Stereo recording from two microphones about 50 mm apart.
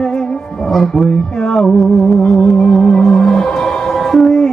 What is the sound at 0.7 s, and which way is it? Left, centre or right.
Music, centre.